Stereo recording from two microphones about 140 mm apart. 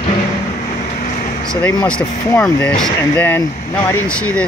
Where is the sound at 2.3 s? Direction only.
10° left (ahead or behind).